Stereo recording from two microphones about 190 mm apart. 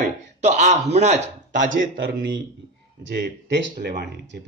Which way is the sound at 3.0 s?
65° right (ahead or behind).